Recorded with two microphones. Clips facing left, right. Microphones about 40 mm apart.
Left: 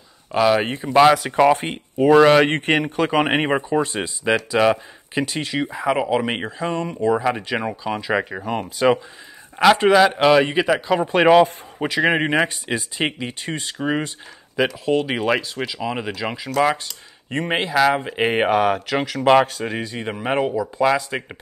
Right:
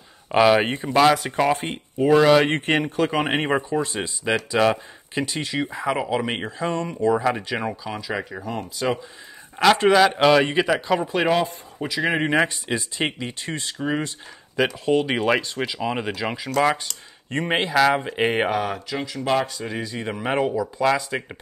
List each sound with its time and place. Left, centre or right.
0.3 s speech: centre
1.3 s speech: centre
3.0 s speech: left
3.3 s speech: centre
8.0 s speech: left
9.6 s speech: centre
11.8 s speech: left
12.1 s speech: centre
14.7 s speech: centre
18.5 s speech: left
18.9 s speech: left
19.2 s speech: left
19.7 s speech: centre